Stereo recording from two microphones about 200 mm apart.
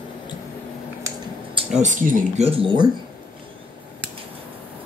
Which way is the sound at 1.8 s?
40° right (ahead or behind).